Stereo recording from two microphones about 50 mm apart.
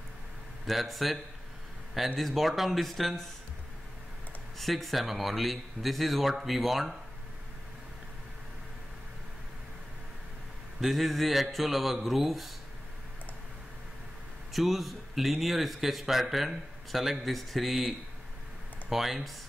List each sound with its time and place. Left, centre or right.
0.7 s speech: centre
4.6 s speech: centre
10.8 s speech: centre
14.5 s speech: centre
18.9 s speech: centre